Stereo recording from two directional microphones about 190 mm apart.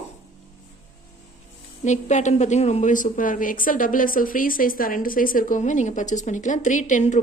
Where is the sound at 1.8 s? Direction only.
40° left (ahead or behind).